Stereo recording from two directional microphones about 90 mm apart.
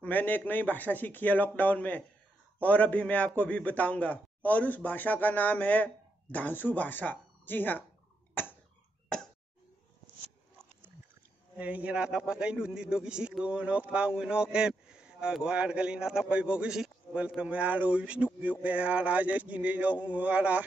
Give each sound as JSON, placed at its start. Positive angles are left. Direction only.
{"t": 0.0, "sound": "a man's voice", "side_deg": 20}
{"t": 8.4, "sound": "a sound", "side_deg": 25}
{"t": 9.1, "sound": "plop", "side_deg": 10}
{"t": 11.5, "sound": "a man's voice", "side_deg": -15}